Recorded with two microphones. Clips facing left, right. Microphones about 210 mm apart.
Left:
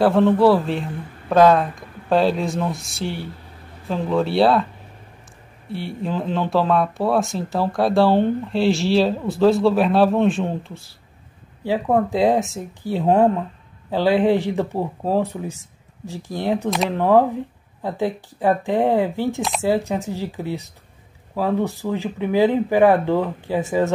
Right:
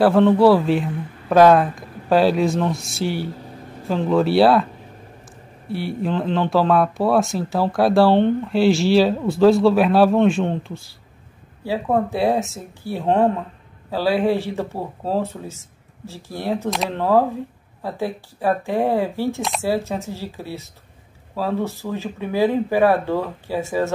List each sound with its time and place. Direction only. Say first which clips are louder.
0.0 s speech: right 1 dB; centre (ahead or behind)
5.7 s speech: right 3 dB; centre (ahead or behind)
11.6 s speech: left 1 dB; 15° left (ahead or behind)
16.7 s speech: left 3 dB; centre (ahead or behind)
17.0 s speech: left 2 dB; 15° left (ahead or behind)